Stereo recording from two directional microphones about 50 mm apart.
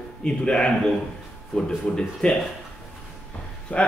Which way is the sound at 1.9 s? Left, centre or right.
Centre.